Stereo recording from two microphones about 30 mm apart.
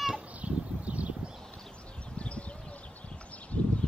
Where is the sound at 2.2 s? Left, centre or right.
Left.